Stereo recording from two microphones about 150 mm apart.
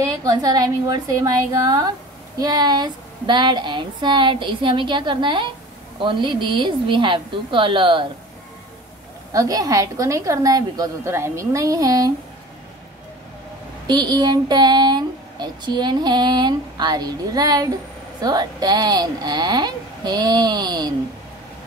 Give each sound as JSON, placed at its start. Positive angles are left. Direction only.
{"t": 0.0, "sound": "a woman's voice", "side_deg": -25}
{"t": 9.3, "sound": "speech", "side_deg": -25}
{"t": 13.8, "sound": "speech", "side_deg": -30}